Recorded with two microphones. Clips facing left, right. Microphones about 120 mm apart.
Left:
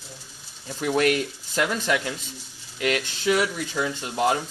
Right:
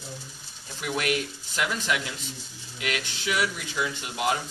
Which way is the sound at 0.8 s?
40° left (ahead or behind).